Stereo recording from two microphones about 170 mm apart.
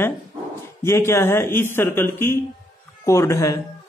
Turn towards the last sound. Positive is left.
turn(degrees=15)  # may be behind; listen again after turning